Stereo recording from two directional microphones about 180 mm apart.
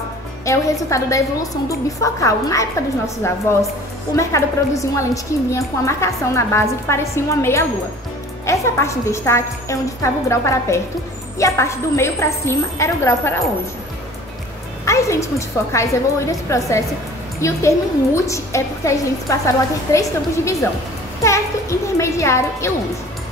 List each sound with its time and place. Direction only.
0.5 s a woman's voice: 15° left (ahead or behind)
14.9 s a woman's voice: 15° left (ahead or behind)